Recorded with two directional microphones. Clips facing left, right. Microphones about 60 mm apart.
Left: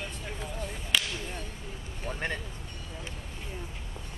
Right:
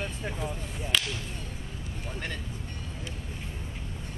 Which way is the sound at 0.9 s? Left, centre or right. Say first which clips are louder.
Even; centre.